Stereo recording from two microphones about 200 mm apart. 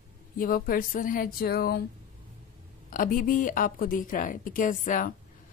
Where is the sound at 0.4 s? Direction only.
45° left (ahead or behind).